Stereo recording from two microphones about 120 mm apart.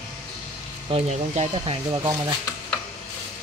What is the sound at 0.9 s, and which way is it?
Speech, 55° right (ahead or behind).